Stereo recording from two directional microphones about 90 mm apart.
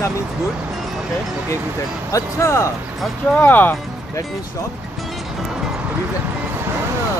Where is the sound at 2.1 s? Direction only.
30° left (ahead or behind).